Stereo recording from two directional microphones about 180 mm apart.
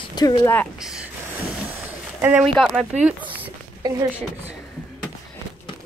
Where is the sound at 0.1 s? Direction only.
25° left (ahead or behind).